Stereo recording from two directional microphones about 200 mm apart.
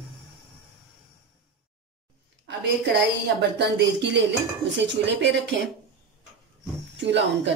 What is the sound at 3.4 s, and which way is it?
A woman's voice, 60° right (ahead or behind).